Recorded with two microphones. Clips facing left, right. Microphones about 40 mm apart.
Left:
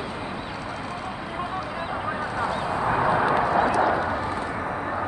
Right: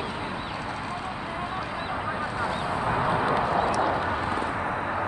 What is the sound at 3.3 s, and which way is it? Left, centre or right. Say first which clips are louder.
Clip-clop: left 3 dB; left.